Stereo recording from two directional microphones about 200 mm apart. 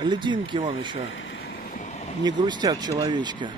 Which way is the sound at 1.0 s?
70° left (ahead or behind).